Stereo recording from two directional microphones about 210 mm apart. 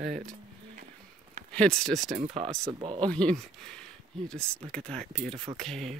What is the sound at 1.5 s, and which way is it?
Speech, 5° left (ahead or behind).